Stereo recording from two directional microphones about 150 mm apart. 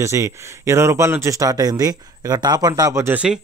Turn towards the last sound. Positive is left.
turn(degrees=-20)  # may be behind; listen again after turning